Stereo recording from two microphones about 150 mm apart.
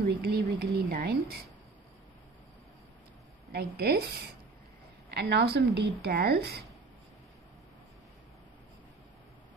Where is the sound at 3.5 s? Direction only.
90° right.